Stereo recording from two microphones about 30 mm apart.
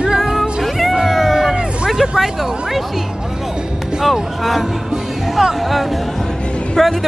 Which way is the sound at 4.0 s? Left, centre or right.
Centre.